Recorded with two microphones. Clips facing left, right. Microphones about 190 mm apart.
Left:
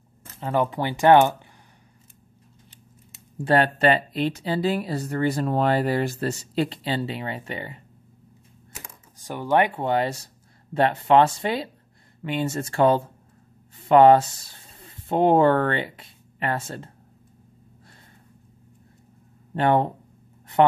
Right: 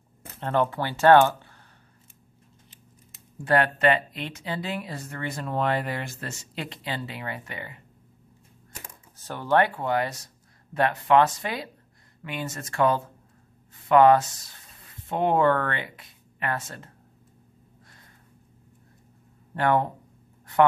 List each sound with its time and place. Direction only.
0.4 s speech: 10° left (ahead or behind)
3.4 s speech: 30° left (ahead or behind)
8.7 s speech: 15° left (ahead or behind); by 16.9 s 30° left (ahead or behind)
19.5 s speech: 25° left (ahead or behind)